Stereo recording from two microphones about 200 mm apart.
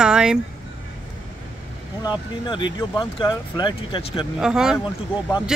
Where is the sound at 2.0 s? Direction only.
20° left (ahead or behind).